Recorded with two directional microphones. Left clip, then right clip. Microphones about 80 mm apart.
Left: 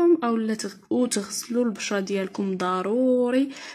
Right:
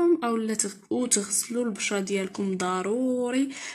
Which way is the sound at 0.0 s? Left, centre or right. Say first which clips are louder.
Left 3 dB; left.